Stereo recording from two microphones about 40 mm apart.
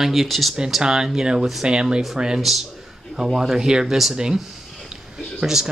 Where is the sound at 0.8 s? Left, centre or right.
Centre.